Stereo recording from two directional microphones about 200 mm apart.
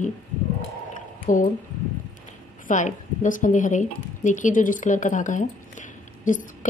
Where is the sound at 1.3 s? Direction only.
40° left (ahead or behind).